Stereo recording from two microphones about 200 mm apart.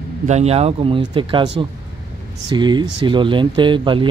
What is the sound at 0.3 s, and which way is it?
Speech, 30° right (ahead or behind).